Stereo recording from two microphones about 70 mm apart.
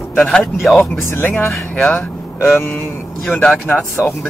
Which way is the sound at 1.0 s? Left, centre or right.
Left.